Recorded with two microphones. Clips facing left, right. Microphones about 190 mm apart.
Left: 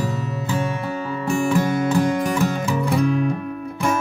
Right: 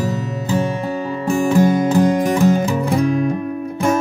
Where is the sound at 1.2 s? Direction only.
40° right (ahead or behind).